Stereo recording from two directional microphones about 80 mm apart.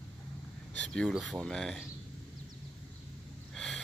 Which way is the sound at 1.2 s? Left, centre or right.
Centre.